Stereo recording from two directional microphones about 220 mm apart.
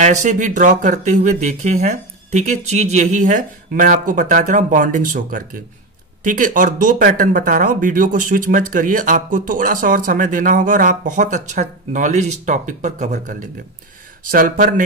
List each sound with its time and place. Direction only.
0.0 s speech: 35° right (ahead or behind)